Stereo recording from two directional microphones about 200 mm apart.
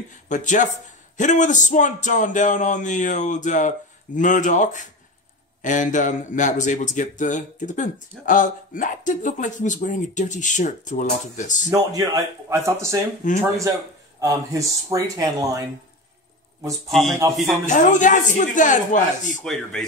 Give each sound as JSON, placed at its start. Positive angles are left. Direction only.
{"t": 0.3, "sound": "a man's voice", "side_deg": 40}
{"t": 11.7, "sound": "speech", "side_deg": -15}
{"t": 13.2, "sound": "a man's voice", "side_deg": 40}
{"t": 14.2, "sound": "speech", "side_deg": -15}
{"t": 17.2, "sound": "speech", "side_deg": -15}
{"t": 17.6, "sound": "a man's voice", "side_deg": 40}
{"t": 19.4, "sound": "speech", "side_deg": 0}